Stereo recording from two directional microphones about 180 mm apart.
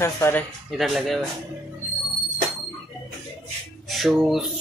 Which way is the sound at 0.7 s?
Centre (ahead or behind).